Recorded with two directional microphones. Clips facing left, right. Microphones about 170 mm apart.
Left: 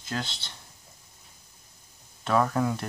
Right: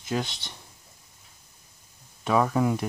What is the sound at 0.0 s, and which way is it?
Speech, 15° right (ahead or behind).